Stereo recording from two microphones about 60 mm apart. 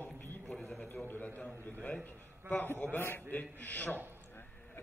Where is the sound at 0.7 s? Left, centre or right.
Left.